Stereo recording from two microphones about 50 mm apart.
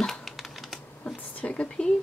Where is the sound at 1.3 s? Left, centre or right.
Left.